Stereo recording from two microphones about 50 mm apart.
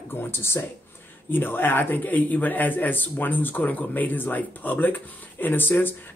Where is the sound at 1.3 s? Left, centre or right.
Left.